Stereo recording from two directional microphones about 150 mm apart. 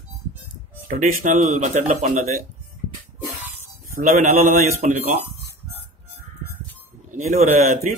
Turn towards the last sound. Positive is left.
turn(degrees=-55)  # may be behind; listen again after turning